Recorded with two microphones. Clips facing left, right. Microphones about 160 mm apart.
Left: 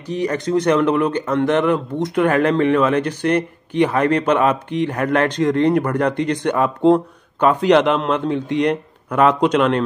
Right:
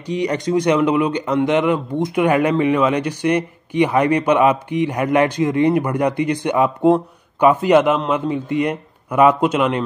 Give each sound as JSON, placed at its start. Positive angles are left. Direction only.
{"t": 0.0, "sound": "speech", "side_deg": -15}